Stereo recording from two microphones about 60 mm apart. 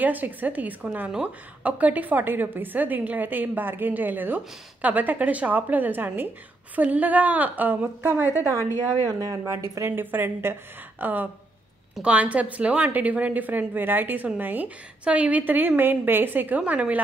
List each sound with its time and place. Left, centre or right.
0.0 s a woman's voice: right
9.0 s speech: right
9.4 s a woman's voice: right